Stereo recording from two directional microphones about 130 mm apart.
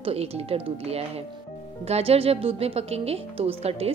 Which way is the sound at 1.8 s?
50° right (ahead or behind).